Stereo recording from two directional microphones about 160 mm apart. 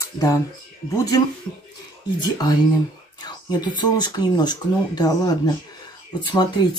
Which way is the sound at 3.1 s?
25° left (ahead or behind).